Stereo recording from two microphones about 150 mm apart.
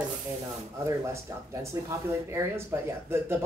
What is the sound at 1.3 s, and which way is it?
Speech, 20° right (ahead or behind).